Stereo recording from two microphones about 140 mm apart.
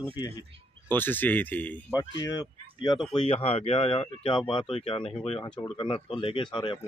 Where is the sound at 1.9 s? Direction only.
25° left (ahead or behind).